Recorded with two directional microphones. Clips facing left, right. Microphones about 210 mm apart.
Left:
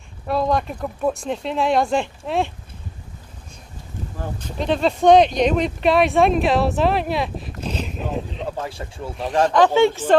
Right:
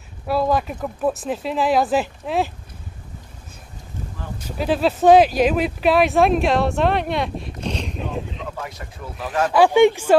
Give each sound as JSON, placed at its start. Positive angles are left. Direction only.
{"t": 0.3, "sound": "speech", "side_deg": -5}
{"t": 4.4, "sound": "speech", "side_deg": -5}
{"t": 8.5, "sound": "speech", "side_deg": 30}
{"t": 9.5, "sound": "speech", "side_deg": -10}